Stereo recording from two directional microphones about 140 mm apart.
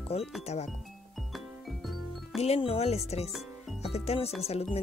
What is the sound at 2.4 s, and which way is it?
Speech, 45° left (ahead or behind).